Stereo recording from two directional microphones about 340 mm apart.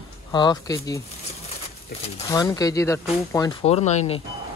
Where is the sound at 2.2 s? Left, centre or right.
Centre.